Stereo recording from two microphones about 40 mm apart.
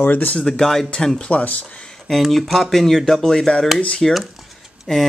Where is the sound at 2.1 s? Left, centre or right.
Centre; by 4.0 s left.